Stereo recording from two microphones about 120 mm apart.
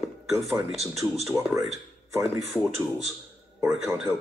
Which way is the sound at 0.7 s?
Centre (ahead or behind).